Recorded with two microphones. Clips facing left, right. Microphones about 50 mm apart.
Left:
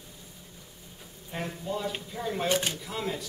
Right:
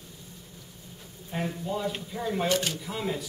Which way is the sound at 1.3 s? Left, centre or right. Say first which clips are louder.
Right 2 dB; centre.